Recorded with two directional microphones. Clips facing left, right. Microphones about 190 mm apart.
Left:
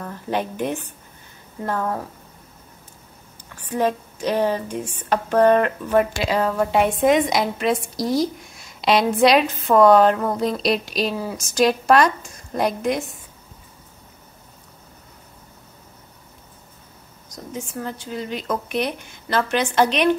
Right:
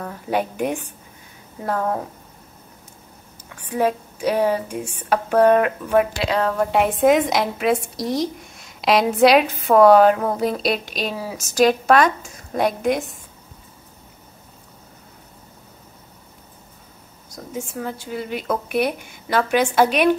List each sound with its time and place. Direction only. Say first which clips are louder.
0.0 s speech: right 2 dB; 10° right (ahead or behind)
3.6 s speech: right 1 dB; 10° right (ahead or behind)
6.1 s a woman's voice: even; 5° left (ahead or behind)
17.5 s speech: right 1 dB; 5° right (ahead or behind)